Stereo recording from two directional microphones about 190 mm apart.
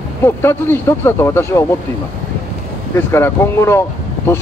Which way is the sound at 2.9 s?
10° left (ahead or behind).